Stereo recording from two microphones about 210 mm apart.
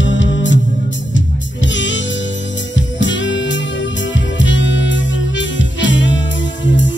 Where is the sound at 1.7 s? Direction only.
60° left (ahead or behind).